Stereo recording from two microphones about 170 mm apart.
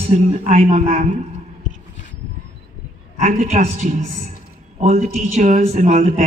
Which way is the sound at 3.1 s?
45° right (ahead or behind).